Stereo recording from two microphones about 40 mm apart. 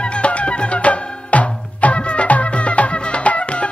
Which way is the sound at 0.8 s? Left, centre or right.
Left.